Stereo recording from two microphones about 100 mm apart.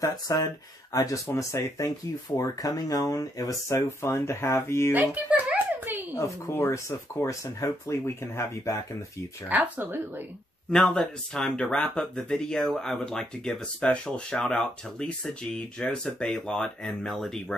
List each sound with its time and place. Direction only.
0.0 s speech: 35° left (ahead or behind)
4.9 s a sound: 20° right (ahead or behind)
6.5 s speech: 30° left (ahead or behind)
9.5 s speech: 15° right (ahead or behind)
10.7 s speech: 5° left (ahead or behind)